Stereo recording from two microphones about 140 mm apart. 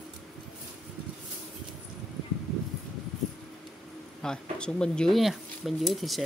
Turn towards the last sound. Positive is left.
turn(degrees=0)  # may be behind; listen again after turning